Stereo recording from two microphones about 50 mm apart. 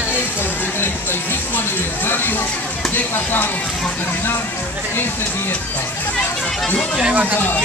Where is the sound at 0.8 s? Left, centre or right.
Left.